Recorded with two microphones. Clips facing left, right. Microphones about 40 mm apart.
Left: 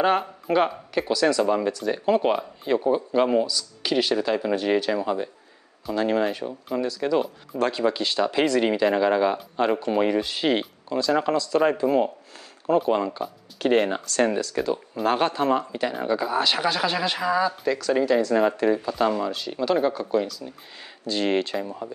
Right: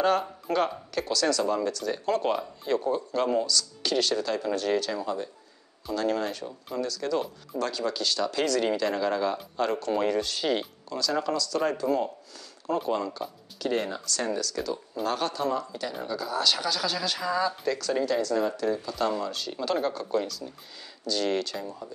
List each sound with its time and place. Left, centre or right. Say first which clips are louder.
0.0 s speech: left 3 dB; left
7.5 s speech: left 6 dB; left
13.6 s speech: left 8 dB; left; by 18.3 s centre
18.3 s speech: left 6 dB; left
19.3 s speech: left 5 dB; centre
20.4 s speech: left 3 dB; left